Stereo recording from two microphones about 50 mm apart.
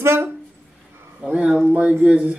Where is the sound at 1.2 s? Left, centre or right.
Centre.